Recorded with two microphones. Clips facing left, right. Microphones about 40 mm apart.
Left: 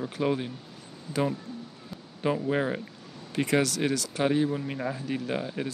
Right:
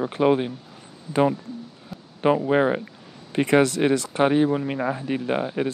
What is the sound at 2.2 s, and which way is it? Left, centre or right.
Speech, right.